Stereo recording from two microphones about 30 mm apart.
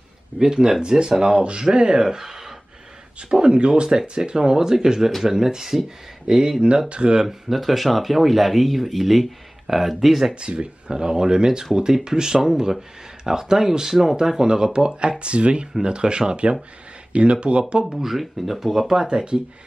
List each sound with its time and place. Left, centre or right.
0.4 s speech: right
2.2 s a sound: centre
3.3 s speech: right
3.5 s speech: right; by 5.8 s centre
6.2 s speech: right
6.9 s speech: right
7.2 s speech: centre
10.3 s speech: right
10.9 s speech: right
17.8 s speech: centre
19.0 s speech: right